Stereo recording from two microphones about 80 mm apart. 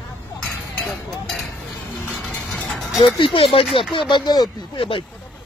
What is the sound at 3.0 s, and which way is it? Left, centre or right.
Speech, left.